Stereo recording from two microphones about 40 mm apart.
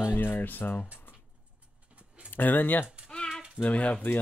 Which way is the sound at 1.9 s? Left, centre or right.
Right.